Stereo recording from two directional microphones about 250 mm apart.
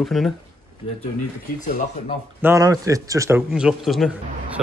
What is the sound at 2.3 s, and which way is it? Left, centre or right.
Speech, centre.